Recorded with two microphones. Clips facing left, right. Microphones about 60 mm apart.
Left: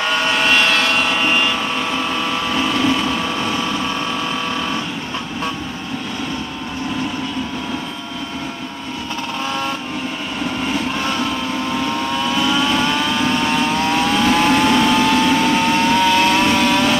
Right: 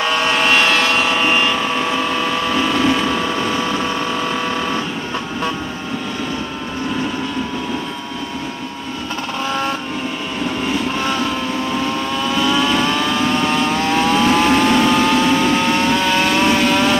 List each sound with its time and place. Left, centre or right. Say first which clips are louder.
0.0 s vehicle: right 1 dB; centre
1.6 s vehicle: right 2 dB; right
12.4 s vehicle: right 2 dB; right
15.7 s vehicle: left 1 dB; right